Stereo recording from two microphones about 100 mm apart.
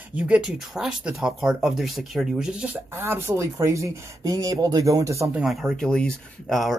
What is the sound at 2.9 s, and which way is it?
Speech, 25° right (ahead or behind).